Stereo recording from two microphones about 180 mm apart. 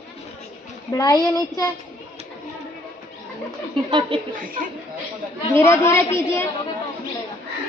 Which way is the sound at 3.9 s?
25° right (ahead or behind).